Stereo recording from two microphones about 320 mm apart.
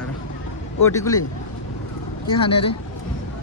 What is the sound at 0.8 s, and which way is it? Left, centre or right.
Speech, centre.